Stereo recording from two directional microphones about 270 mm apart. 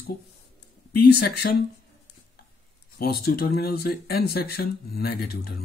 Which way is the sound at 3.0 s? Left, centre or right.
Left.